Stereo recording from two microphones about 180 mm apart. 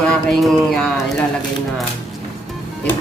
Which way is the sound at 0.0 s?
5° left (ahead or behind).